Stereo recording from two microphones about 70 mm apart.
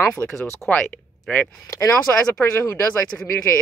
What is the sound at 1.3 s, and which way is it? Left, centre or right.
Speech, centre.